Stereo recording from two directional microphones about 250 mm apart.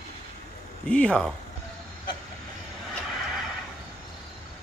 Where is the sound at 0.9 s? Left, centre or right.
Centre.